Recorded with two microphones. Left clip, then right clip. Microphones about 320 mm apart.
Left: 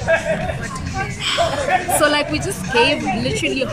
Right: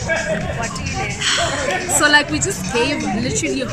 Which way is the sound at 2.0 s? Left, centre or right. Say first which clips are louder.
Right 3 dB; centre.